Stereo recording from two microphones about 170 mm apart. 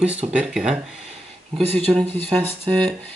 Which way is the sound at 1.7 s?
10° left (ahead or behind).